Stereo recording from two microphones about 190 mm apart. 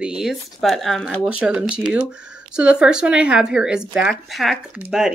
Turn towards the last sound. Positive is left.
turn(degrees=-5)  # may be behind; listen again after turning